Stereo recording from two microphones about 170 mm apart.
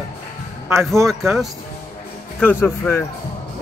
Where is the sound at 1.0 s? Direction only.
Centre (ahead or behind).